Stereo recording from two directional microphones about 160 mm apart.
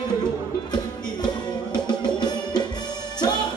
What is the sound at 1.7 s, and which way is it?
Music, 25° left (ahead or behind).